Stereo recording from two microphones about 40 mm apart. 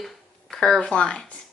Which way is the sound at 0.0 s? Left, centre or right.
Centre.